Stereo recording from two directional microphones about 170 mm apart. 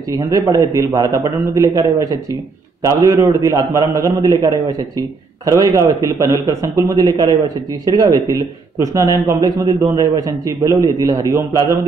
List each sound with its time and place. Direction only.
0.1 s a man's voice: 20° right (ahead or behind)